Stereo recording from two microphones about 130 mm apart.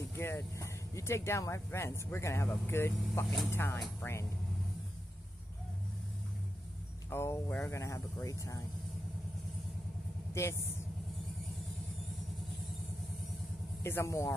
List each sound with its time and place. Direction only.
0.1 s speech: 20° left (ahead or behind)
7.1 s speech: 20° left (ahead or behind)
10.4 s speech: 20° left (ahead or behind)
13.8 s speech: 20° left (ahead or behind)